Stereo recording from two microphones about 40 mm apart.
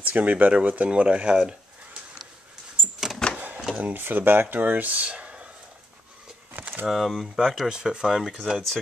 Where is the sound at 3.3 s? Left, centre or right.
Right.